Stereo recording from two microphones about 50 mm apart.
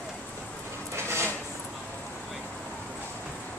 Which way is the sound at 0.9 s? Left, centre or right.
Right.